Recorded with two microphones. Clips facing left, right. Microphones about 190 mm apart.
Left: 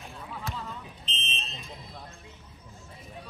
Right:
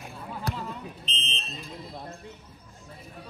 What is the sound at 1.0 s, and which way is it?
Fire alarm, centre (ahead or behind).